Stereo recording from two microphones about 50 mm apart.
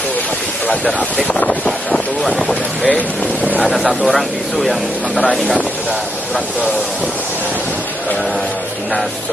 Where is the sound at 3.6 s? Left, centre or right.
Centre.